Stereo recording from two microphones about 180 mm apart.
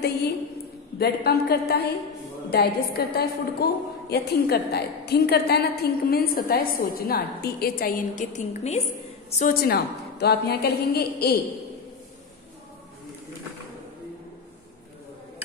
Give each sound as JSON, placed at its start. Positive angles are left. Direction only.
{"t": 0.9, "sound": "a woman's voice", "side_deg": 60}
{"t": 9.4, "sound": "a woman's voice", "side_deg": 60}